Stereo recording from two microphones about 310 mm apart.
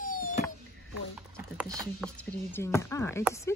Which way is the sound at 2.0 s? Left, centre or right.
Centre.